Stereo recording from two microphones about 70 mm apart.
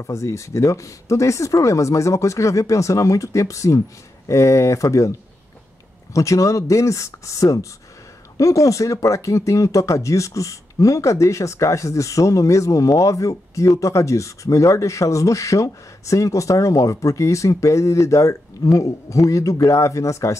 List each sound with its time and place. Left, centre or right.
0.0 s speech: left
6.1 s speech: left